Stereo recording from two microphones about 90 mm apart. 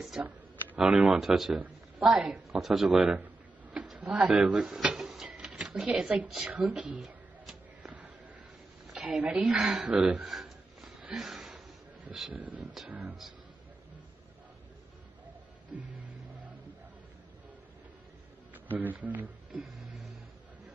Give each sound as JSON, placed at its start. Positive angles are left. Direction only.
{"t": 0.7, "sound": "speech", "side_deg": -5}
{"t": 4.8, "sound": "a sound", "side_deg": -5}
{"t": 6.5, "sound": "speech", "side_deg": -10}
{"t": 7.0, "sound": "a sound", "side_deg": -5}
{"t": 8.9, "sound": "a woman's voice", "side_deg": -10}
{"t": 11.1, "sound": "a sound", "side_deg": -5}
{"t": 12.1, "sound": "speech", "side_deg": -5}
{"t": 12.4, "sound": "speech", "side_deg": -15}
{"t": 18.5, "sound": "a man's voice", "side_deg": -20}